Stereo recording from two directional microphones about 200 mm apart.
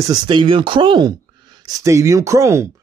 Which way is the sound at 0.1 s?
25° right (ahead or behind).